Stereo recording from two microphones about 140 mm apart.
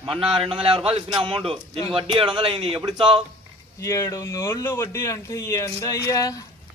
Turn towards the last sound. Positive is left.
turn(degrees=25)  # may be behind; listen again after turning